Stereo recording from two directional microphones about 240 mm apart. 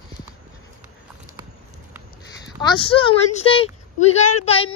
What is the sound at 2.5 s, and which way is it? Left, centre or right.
Speech, centre.